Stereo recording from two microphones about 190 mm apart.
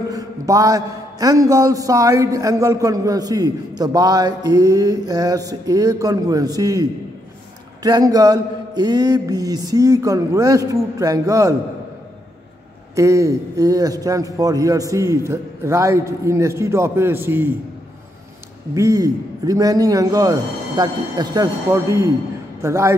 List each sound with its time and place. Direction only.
0.1 s a man's voice: 20° right (ahead or behind)
12.9 s a man's voice: 15° right (ahead or behind)
18.8 s a man's voice: 20° right (ahead or behind)